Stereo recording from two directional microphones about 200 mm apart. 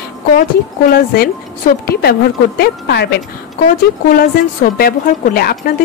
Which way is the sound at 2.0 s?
50° left (ahead or behind).